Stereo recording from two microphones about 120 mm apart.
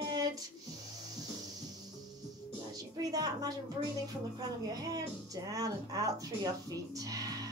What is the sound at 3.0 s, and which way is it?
A child's voice, 30° right (ahead or behind).